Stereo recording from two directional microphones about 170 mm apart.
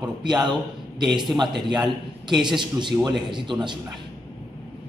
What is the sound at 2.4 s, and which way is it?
A man's voice, 25° right (ahead or behind).